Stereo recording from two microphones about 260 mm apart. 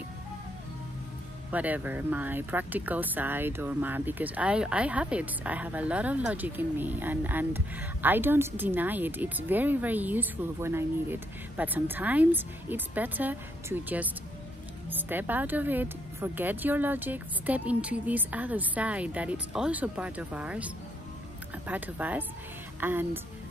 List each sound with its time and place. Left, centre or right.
1.5 s speech: centre